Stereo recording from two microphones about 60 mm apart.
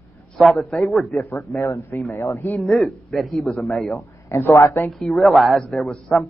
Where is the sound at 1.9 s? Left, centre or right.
Left.